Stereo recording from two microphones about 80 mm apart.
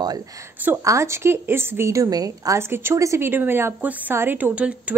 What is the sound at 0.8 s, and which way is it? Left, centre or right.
A woman's voice, right.